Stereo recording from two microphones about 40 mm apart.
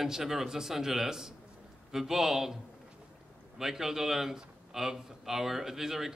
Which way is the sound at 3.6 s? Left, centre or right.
Centre.